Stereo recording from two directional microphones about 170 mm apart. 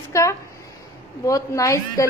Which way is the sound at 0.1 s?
15° left (ahead or behind).